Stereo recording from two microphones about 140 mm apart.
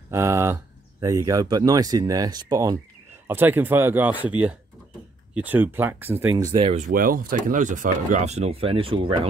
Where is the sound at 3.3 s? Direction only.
15° right (ahead or behind).